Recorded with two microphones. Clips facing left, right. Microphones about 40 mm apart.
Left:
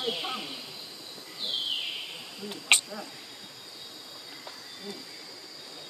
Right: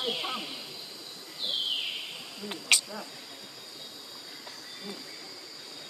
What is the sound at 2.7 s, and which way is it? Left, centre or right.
Speech, left.